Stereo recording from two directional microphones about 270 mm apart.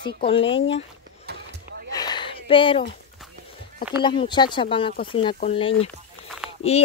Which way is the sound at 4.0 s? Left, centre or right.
Centre.